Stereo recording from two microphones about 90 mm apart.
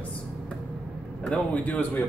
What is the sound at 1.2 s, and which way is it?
Speech, 15° left (ahead or behind).